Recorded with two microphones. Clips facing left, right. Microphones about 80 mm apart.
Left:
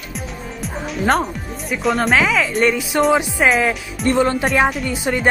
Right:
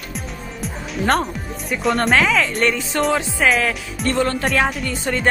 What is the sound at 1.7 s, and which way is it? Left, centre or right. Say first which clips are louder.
Speech: left 1 dB; centre.